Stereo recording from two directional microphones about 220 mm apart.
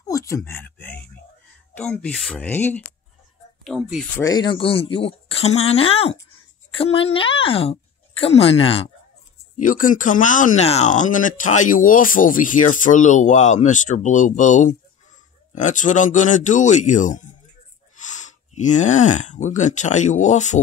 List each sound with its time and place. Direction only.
0.0 s a sound: 15° left (ahead or behind)
1.8 s speech: 5° left (ahead or behind)
4.2 s speech: 20° left (ahead or behind)
9.6 s speech: 35° left (ahead or behind)